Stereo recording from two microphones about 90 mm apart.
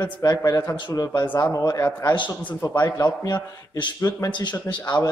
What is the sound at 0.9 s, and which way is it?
A man's voice, 45° left (ahead or behind).